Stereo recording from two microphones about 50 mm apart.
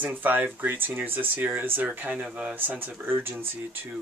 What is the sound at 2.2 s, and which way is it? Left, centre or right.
Speech, right.